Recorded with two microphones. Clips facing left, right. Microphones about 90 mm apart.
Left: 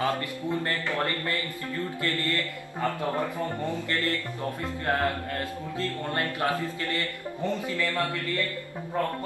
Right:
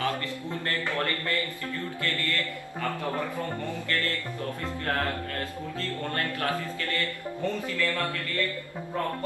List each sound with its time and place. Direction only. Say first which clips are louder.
0.0 s a sound: left 2 dB; 20° left (ahead or behind)
2.0 s speech: left 1 dB; 25° left (ahead or behind)
3.9 s speech: even; 20° left (ahead or behind)
5.8 s speech: left 2 dB; 20° left (ahead or behind)